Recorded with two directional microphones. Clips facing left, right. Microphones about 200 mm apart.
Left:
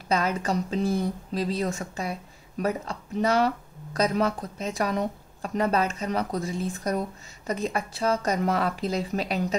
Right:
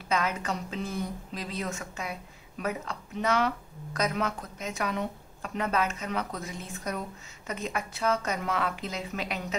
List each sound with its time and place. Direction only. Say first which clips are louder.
0.1 s a woman's voice: left 4 dB; 35° left (ahead or behind)